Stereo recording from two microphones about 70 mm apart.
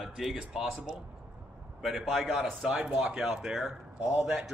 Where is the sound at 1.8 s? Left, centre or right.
Centre.